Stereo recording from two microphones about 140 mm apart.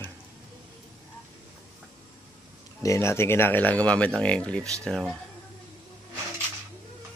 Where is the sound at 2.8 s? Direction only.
20° left (ahead or behind); by 5.2 s 5° left (ahead or behind).